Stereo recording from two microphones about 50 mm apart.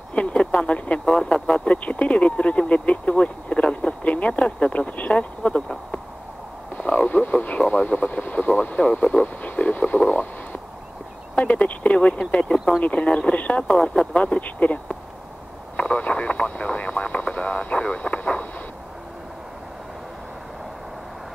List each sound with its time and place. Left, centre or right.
0.1 s speech: left
6.8 s speech: left